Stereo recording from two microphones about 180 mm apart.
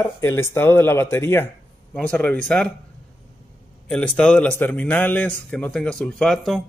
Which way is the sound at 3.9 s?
5° left (ahead or behind).